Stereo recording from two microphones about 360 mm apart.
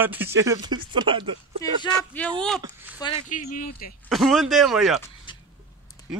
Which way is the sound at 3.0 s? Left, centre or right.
Centre.